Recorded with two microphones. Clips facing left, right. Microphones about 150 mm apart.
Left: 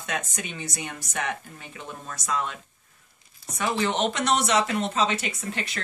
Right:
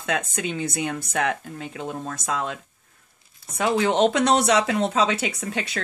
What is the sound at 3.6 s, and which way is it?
Speech, 90° right.